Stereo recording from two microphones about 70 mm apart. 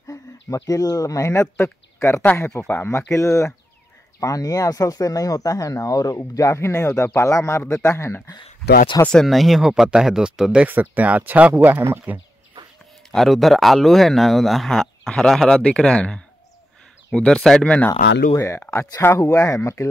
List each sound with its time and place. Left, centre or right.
0.0 s speech: left
4.2 s speech: left
6.1 s speech: left
9.1 s speech: centre
10.6 s speech: right
13.1 s speech: centre
17.8 s speech: left